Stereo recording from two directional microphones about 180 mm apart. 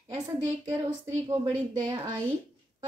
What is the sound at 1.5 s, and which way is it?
Speech, 15° right (ahead or behind).